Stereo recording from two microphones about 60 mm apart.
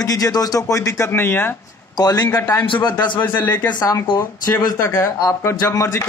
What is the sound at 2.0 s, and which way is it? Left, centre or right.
Speech, left.